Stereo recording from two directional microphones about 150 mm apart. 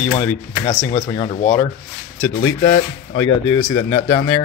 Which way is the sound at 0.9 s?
35° left (ahead or behind).